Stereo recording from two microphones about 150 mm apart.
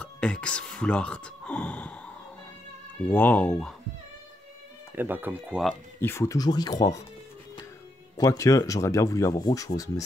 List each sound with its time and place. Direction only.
0.0 s a sound: 5° left (ahead or behind)
3.1 s speech: 15° left (ahead or behind)
4.9 s speech: 15° right (ahead or behind)
5.9 s speech: 15° left (ahead or behind)
8.2 s speech: 20° left (ahead or behind)